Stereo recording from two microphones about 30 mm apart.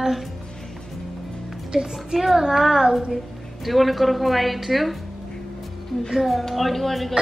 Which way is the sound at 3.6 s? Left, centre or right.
Centre.